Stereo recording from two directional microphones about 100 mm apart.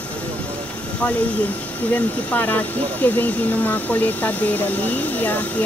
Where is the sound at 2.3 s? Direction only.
15° left (ahead or behind).